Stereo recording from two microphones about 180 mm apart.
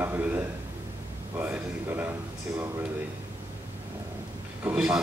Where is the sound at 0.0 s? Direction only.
10° right (ahead or behind).